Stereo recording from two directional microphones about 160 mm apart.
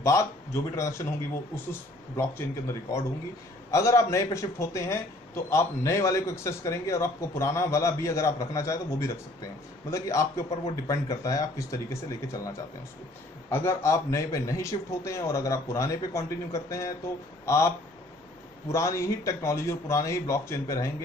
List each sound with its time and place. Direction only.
0.0 s a man's voice: 20° left (ahead or behind)